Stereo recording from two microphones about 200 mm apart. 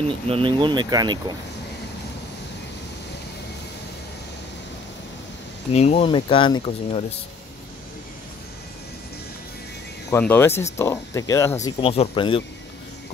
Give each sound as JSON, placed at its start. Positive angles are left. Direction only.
{"t": 0.3, "sound": "speech", "side_deg": -25}
{"t": 5.7, "sound": "speech", "side_deg": 30}
{"t": 10.0, "sound": "speech", "side_deg": 10}
{"t": 11.8, "sound": "speech", "side_deg": 30}